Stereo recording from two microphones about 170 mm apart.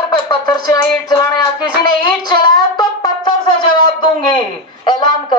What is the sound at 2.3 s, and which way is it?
Music, 25° left (ahead or behind).